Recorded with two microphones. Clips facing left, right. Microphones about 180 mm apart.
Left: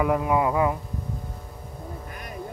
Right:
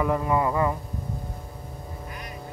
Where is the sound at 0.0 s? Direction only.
10° left (ahead or behind).